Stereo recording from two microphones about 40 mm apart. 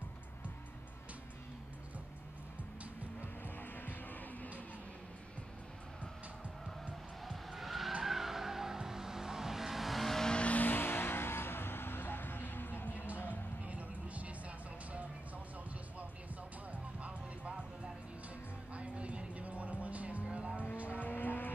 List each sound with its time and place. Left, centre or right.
7.2 s skidding: centre
8.0 s vehicle: centre
10.3 s vehicle: left
10.6 s vehicle: left
13.7 s a sound: right
17.0 s music: right
20.3 s vehicle: right
20.9 s vehicle: left